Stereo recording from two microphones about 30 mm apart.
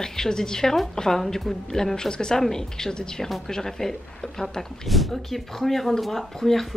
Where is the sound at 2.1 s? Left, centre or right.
Left.